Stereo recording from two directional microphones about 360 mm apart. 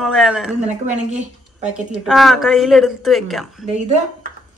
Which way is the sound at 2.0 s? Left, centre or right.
Centre.